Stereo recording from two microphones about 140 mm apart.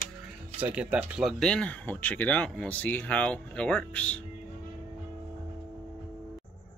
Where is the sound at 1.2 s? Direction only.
5° left (ahead or behind).